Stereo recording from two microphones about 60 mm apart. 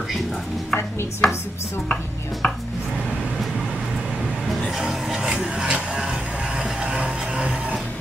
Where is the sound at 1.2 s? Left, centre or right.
Centre.